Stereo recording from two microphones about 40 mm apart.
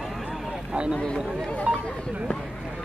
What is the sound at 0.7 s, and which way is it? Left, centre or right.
Speech, right.